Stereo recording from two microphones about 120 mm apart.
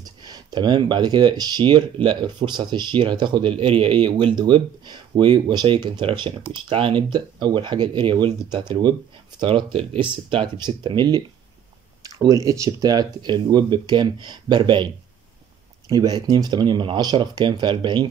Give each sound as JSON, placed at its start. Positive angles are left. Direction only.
{"t": 0.0, "sound": "speech", "side_deg": -35}
{"t": 15.9, "sound": "speech", "side_deg": -35}